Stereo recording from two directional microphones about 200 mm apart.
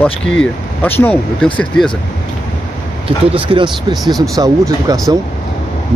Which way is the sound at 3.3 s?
25° right (ahead or behind).